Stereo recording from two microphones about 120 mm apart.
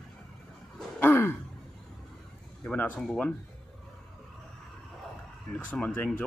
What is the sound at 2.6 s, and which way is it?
Speech, 10° left (ahead or behind).